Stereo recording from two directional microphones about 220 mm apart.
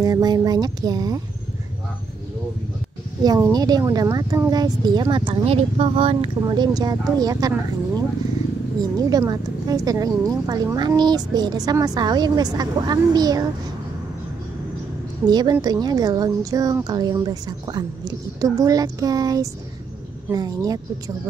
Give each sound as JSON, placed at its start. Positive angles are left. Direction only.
{"t": 0.0, "sound": "a woman's voice", "side_deg": -15}
{"t": 3.3, "sound": "a woman's voice", "side_deg": -15}
{"t": 8.9, "sound": "a woman's voice", "side_deg": -15}
{"t": 15.2, "sound": "a woman's voice", "side_deg": -20}